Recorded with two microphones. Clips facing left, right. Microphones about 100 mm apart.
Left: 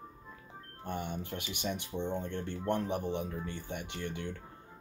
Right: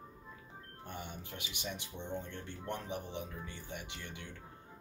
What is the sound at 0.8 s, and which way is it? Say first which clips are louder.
Speech: left 8 dB; 55° left (ahead or behind).